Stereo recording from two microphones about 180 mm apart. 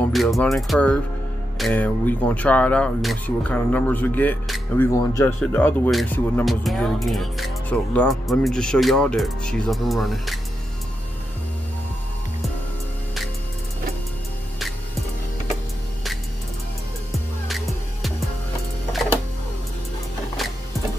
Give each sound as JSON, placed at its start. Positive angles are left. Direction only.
{"t": 0.0, "sound": "speech", "side_deg": 0}
{"t": 5.9, "sound": "speech", "side_deg": 0}
{"t": 17.5, "sound": "music", "side_deg": 0}